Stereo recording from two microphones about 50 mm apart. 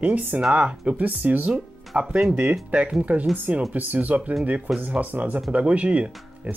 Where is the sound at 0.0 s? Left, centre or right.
Right.